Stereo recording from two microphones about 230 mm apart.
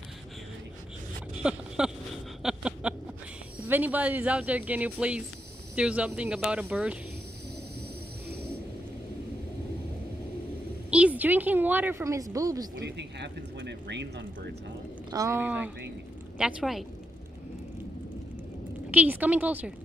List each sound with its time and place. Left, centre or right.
1.4 s a sound: centre
3.6 s speech: centre
10.9 s a woman's voice: centre
12.7 s speech: right
15.0 s speech: centre
18.9 s speech: centre